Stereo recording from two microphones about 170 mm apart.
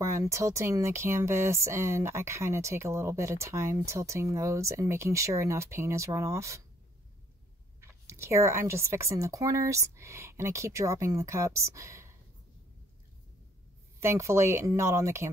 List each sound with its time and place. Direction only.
0.0 s speech: 15° right (ahead or behind)
7.8 s speech: 15° right (ahead or behind)
13.9 s speech: 15° right (ahead or behind)